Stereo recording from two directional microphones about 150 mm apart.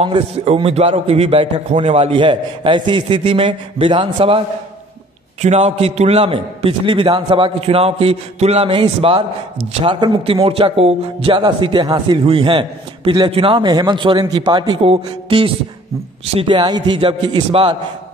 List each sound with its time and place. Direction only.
0.0 s a man's voice: 35° right (ahead or behind)
5.4 s a man's voice: 45° right (ahead or behind)